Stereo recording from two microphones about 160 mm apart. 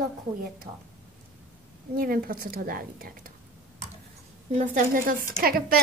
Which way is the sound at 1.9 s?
65° right (ahead or behind).